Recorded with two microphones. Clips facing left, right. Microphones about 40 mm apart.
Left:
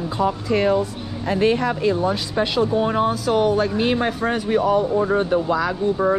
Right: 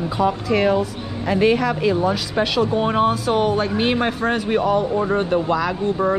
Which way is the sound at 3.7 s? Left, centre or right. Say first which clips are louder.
Right 1 dB; right.